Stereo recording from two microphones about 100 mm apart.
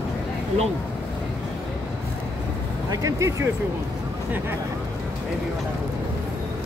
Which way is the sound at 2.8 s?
35° right (ahead or behind).